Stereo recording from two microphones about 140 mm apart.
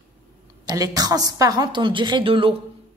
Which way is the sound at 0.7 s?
25° right (ahead or behind).